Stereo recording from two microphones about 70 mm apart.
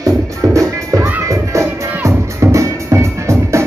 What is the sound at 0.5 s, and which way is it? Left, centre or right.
Music, right.